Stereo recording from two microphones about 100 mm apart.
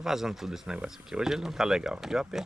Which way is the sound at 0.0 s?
5° right (ahead or behind).